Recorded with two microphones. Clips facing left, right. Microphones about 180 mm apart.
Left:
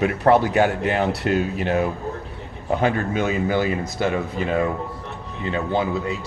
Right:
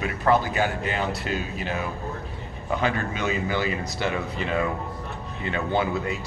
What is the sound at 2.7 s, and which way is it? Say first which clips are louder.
A man's voice: left 5 dB; 50° left (ahead or behind).